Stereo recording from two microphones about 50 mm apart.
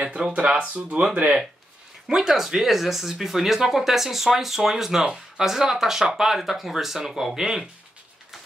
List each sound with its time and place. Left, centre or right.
0.0 s speech: right
2.0 s speech: centre